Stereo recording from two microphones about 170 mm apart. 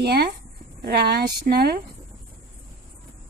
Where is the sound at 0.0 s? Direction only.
70° right (ahead or behind).